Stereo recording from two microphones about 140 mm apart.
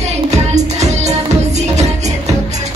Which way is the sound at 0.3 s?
55° right (ahead or behind).